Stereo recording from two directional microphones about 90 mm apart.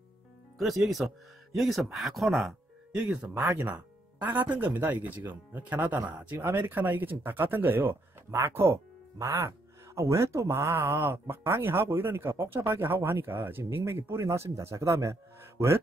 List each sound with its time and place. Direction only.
0.6 s speech: centre (ahead or behind)
3.0 s speech: 15° right (ahead or behind); by 15.8 s 30° right (ahead or behind)